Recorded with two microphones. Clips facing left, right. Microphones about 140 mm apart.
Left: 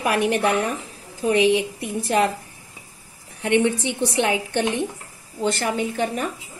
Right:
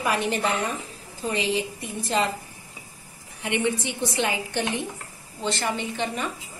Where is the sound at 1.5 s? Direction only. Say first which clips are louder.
Left 6 dB; 15° left (ahead or behind).